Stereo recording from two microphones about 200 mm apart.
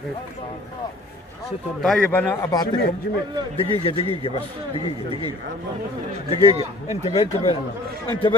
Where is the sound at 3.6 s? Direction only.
25° left (ahead or behind).